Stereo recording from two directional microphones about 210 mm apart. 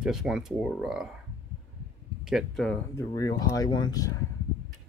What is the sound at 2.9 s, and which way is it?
Speech, 15° left (ahead or behind).